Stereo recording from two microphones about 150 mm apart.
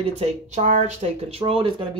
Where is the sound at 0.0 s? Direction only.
45° right (ahead or behind).